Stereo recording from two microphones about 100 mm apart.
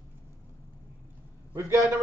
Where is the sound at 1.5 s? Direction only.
30° right (ahead or behind).